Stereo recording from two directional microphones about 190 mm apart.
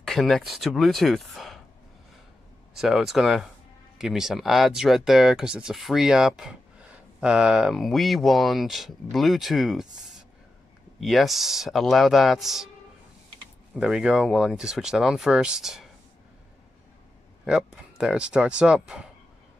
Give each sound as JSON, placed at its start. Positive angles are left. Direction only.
{"t": 0.0, "sound": "a sound", "side_deg": 0}
{"t": 0.5, "sound": "speech", "side_deg": 0}
{"t": 2.8, "sound": "speech", "side_deg": 0}
{"t": 11.0, "sound": "speech", "side_deg": 0}
{"t": 13.7, "sound": "speech", "side_deg": -5}
{"t": 17.5, "sound": "speech", "side_deg": -5}